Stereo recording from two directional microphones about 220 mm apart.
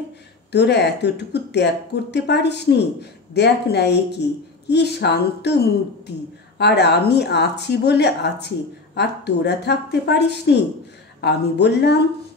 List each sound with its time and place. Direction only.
0.5 s speech: 50° left (ahead or behind)